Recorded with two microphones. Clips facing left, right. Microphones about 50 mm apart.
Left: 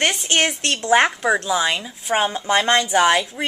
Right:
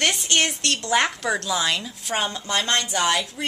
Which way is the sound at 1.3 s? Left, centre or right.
Centre.